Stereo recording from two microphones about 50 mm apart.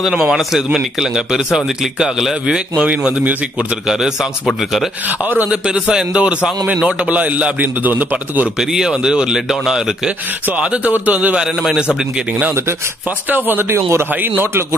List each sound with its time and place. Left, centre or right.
0.3 s a man's voice: centre
3.8 s a man's voice: centre
5.2 s a man's voice: right
5.5 s a man's voice: centre
8.5 s a man's voice: centre
10.6 s a man's voice: right
10.9 s a man's voice: right
11.3 s a man's voice: centre
13.3 s speech: right
14.2 s a man's voice: right